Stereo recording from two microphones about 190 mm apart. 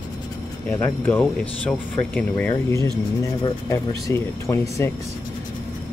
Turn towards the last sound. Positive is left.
turn(degrees=15)  # may be behind; listen again after turning